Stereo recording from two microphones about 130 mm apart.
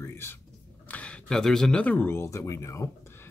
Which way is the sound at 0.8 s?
10° left (ahead or behind).